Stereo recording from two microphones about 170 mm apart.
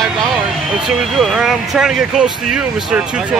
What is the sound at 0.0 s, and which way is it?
Speech, centre (ahead or behind).